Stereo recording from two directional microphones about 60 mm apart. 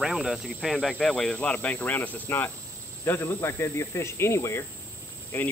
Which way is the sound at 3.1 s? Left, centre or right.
Left.